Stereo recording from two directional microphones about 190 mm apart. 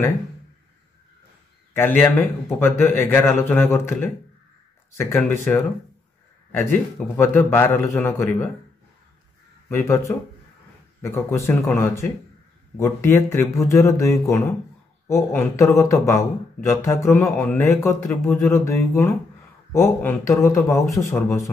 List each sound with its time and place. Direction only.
1.8 s speech: 10° left (ahead or behind)
9.7 s speech: 15° left (ahead or behind)